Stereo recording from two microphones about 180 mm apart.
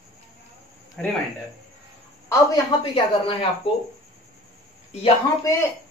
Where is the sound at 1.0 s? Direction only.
5° left (ahead or behind).